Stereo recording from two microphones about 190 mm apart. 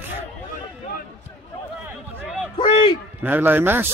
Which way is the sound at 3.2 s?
10° right (ahead or behind).